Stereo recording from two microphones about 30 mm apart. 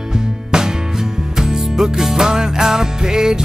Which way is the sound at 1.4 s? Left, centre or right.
Centre.